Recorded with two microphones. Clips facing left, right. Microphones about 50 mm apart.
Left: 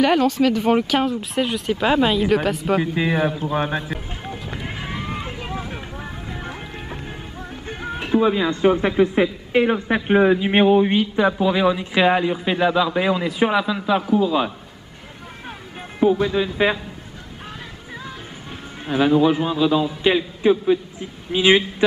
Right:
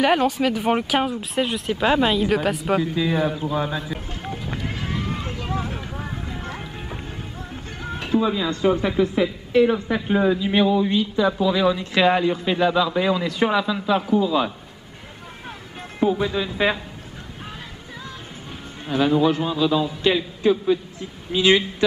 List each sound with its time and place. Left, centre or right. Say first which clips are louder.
0.0 s speech: left 2 dB; centre
2.8 s a man's voice: left 1 dB; left
3.3 s speech: left 1 dB; centre
3.5 s a man's voice: left 2 dB; left
4.2 s vehicle: right 1 dB; centre
7.8 s a man's voice: left 3 dB; centre; by 11.3 s left
11.3 s speech: left 1 dB; left
16.0 s speech: left 3 dB; centre
18.9 s speech: left 2 dB; centre